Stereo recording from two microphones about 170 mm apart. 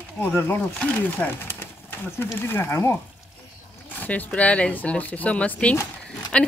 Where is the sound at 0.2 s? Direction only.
15° left (ahead or behind).